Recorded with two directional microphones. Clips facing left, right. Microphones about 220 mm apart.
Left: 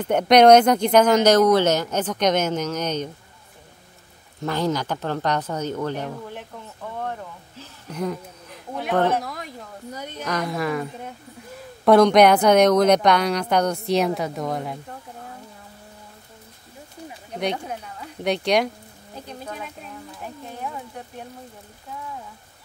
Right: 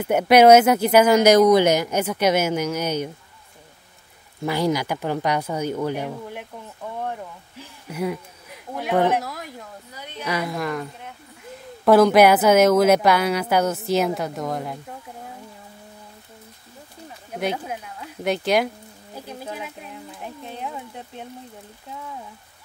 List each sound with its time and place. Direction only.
0.0 s speech: 5° right (ahead or behind)
4.4 s speech: 10° right (ahead or behind)
7.0 s a sound: 10° right (ahead or behind)
9.8 s a woman's voice: 45° left (ahead or behind)
10.2 s a woman's voice: 5° right (ahead or behind)
17.3 s speech: 5° right (ahead or behind)
20.5 s a sound: 20° right (ahead or behind)